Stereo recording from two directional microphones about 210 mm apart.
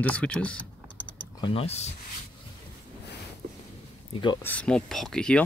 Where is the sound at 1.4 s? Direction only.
25° left (ahead or behind).